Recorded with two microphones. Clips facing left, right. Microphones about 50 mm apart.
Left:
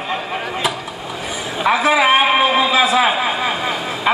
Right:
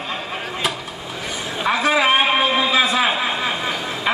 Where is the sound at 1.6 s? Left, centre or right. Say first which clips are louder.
Left 3 dB; centre.